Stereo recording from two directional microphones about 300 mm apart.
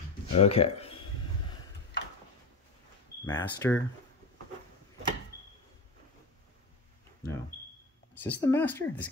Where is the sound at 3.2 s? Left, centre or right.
Centre.